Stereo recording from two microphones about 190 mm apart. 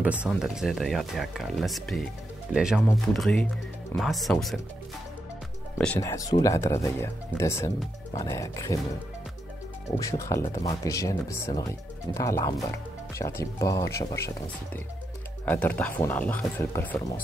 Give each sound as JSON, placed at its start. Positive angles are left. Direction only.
{"t": 0.0, "sound": "speech", "side_deg": -5}
{"t": 5.9, "sound": "speech", "side_deg": 15}
{"t": 9.9, "sound": "speech", "side_deg": 15}